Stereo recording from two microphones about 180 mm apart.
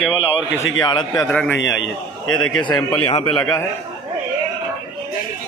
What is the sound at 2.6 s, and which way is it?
Speech, 25° left (ahead or behind).